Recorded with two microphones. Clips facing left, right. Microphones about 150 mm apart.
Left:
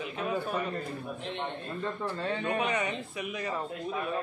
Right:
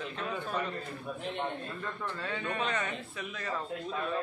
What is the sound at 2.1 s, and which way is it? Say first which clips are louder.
Speech: left 5 dB; 30° left (ahead or behind).